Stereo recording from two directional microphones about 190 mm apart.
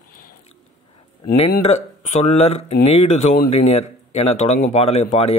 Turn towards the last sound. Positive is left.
turn(degrees=35)  # may be behind; listen again after turning